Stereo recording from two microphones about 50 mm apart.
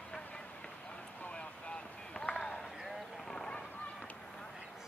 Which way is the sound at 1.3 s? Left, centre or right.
Left.